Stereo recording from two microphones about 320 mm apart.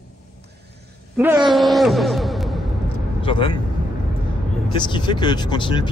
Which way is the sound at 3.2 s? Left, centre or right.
Centre.